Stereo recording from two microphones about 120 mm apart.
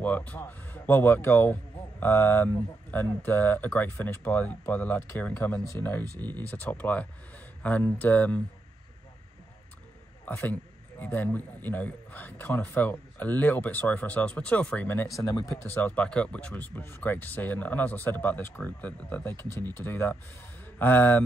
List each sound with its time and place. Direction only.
0.0 s a man's voice: 15° left (ahead or behind)
6.1 s speech: 35° right (ahead or behind)
6.5 s a man's voice: 15° left (ahead or behind)
10.2 s a man's voice: 15° left (ahead or behind)
15.1 s speech: 30° left (ahead or behind)
15.6 s a man's voice: 15° left (ahead or behind)